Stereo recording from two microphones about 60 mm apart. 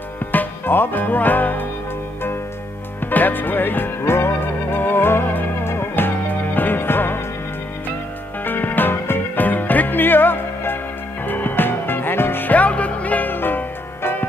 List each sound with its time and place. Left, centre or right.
0.2 s music: left
3.0 s music: left
8.5 s music: left